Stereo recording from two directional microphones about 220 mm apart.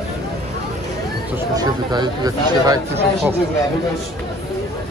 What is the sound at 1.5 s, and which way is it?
Speech, 20° right (ahead or behind).